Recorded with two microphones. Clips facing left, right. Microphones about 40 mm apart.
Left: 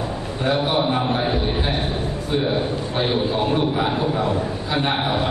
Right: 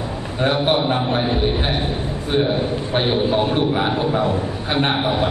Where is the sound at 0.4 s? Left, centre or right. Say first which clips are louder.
Right 2 dB; right.